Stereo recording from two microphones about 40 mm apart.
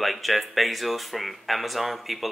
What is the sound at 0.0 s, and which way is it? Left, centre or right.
Speech, centre.